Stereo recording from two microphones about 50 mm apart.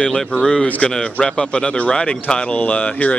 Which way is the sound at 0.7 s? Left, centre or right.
Left.